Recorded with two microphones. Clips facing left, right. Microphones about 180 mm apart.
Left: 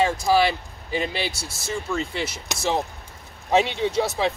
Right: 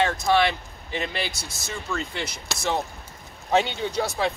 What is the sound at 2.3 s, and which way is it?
Speech, 30° left (ahead or behind).